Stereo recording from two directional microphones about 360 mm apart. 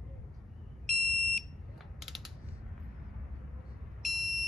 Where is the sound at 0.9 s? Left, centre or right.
Centre.